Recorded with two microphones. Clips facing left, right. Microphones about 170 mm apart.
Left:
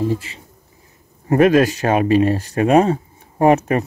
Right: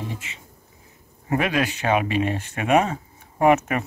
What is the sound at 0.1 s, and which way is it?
Speech, 35° left (ahead or behind).